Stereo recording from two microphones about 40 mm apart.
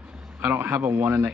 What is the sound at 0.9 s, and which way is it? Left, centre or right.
Speech, right.